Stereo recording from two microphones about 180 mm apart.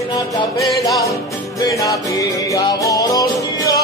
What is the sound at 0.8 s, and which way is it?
Music, 20° left (ahead or behind).